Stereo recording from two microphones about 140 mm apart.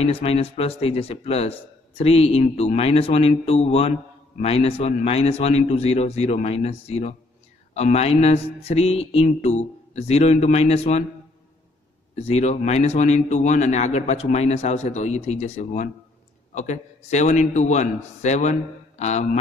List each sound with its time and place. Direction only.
0.0 s speech: 45° left (ahead or behind)
12.2 s a man's voice: 50° left (ahead or behind)